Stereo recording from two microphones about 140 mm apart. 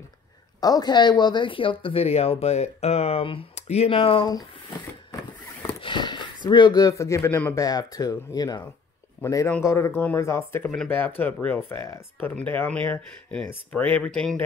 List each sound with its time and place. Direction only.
0.6 s speech: 30° left (ahead or behind); by 4.3 s 45° left (ahead or behind)
5.6 s speech: 35° left (ahead or behind); by 14.4 s 5° left (ahead or behind)